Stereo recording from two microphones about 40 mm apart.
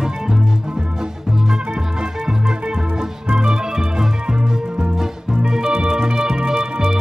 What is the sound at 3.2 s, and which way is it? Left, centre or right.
Music, right.